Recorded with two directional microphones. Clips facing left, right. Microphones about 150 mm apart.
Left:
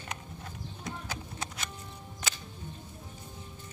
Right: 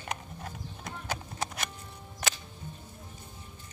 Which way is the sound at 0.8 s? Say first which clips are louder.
Right 2 dB; 60° right (ahead or behind).